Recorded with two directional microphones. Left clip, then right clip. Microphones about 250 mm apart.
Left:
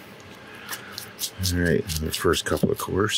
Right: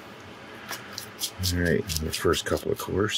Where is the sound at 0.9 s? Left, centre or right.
Centre.